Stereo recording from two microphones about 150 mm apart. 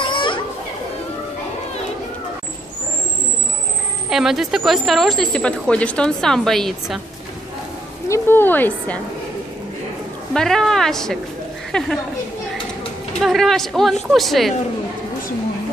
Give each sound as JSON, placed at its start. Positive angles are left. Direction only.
{"t": 0.0, "sound": "children playing", "side_deg": 30}
{"t": 4.1, "sound": "a woman's voice", "side_deg": -5}
{"t": 8.1, "sound": "speech", "side_deg": 15}
{"t": 10.3, "sound": "a woman's voice", "side_deg": 5}
{"t": 13.2, "sound": "a woman's voice", "side_deg": 0}